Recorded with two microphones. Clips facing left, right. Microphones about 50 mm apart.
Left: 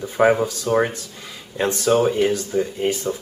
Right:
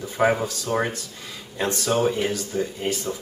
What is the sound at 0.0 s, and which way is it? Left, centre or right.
Speech, centre.